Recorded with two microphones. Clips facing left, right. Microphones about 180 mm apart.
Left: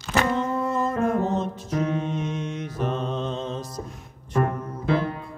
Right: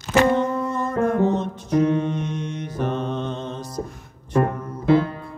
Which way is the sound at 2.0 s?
Centre (ahead or behind).